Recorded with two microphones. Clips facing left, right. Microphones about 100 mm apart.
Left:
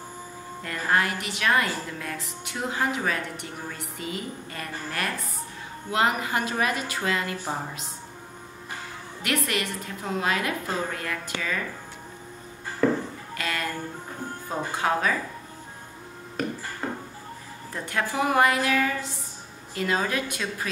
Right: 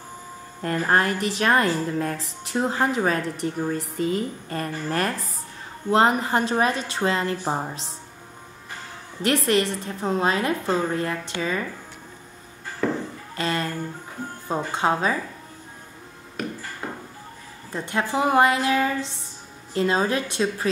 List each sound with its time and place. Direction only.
0.6 s a woman's voice: 40° right (ahead or behind)
9.5 s a woman's voice: 30° right (ahead or behind)
12.8 s music: 5° left (ahead or behind)
13.4 s music: 30° right (ahead or behind)
14.5 s a woman's voice: 25° right (ahead or behind)
16.4 s music: centre (ahead or behind)
16.8 s a sound: 5° right (ahead or behind)
17.7 s a woman's voice: 20° right (ahead or behind)